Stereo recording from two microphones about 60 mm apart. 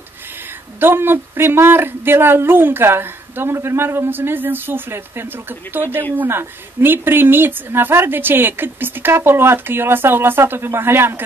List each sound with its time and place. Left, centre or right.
0.7 s speech: right